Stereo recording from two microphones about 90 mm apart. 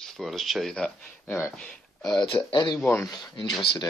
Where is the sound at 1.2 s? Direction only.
20° left (ahead or behind).